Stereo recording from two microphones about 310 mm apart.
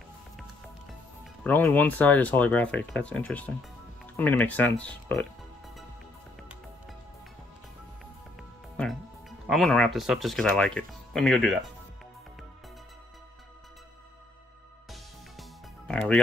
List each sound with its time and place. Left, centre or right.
0.4 s speech: centre
8.4 s music: centre
9.5 s speech: centre
15.9 s music: centre